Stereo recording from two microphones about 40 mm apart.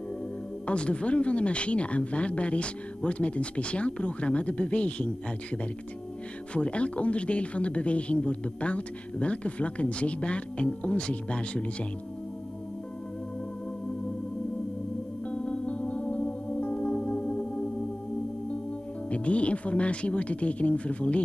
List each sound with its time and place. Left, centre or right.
0.7 s speech: left
15.2 s music: left
19.0 s speech: left